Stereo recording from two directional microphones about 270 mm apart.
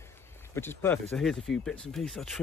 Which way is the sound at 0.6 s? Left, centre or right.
Centre.